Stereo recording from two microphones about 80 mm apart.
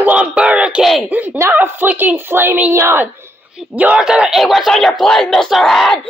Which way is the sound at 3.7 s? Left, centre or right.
Centre.